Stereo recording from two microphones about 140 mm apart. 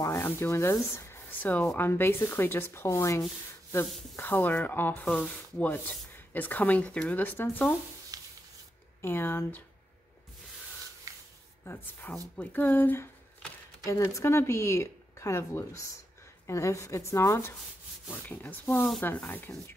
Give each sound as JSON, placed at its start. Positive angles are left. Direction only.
{"t": 0.0, "sound": "sanding", "side_deg": 20}
{"t": 4.2, "sound": "sanding", "side_deg": 15}
{"t": 8.1, "sound": "a sound", "side_deg": -25}
{"t": 9.0, "sound": "sanding", "side_deg": 15}
{"t": 11.1, "sound": "a sound", "side_deg": -25}
{"t": 11.6, "sound": "sanding", "side_deg": 15}
{"t": 12.4, "sound": "a woman's voice", "side_deg": 15}
{"t": 18.1, "sound": "sanding", "side_deg": 10}